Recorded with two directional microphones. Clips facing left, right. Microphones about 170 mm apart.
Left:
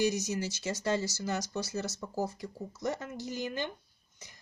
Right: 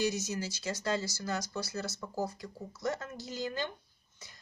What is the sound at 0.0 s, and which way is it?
Speech, 15° left (ahead or behind).